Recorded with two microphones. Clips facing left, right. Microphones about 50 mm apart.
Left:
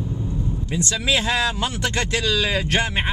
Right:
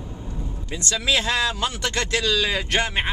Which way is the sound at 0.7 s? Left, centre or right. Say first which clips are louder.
Left 1 dB; centre.